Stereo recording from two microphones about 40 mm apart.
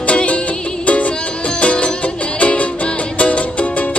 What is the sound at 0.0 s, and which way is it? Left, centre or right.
Music, left.